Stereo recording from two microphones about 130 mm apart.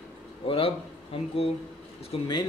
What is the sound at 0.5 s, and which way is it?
Speech, 45° left (ahead or behind).